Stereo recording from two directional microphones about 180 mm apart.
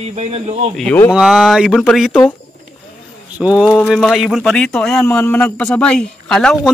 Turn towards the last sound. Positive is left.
turn(degrees=5)  # may be behind; listen again after turning